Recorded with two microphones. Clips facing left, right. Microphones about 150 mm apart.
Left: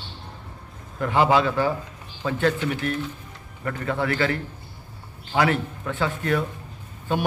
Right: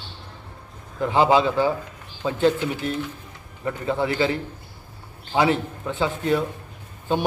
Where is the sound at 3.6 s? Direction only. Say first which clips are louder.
Right 2 dB; 15° right (ahead or behind).